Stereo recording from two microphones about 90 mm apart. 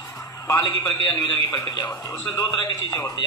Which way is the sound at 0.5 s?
45° left (ahead or behind).